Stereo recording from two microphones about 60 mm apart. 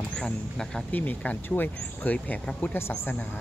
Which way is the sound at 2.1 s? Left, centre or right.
Centre.